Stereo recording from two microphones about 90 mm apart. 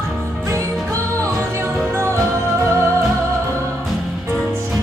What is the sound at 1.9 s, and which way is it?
Music, 30° right (ahead or behind).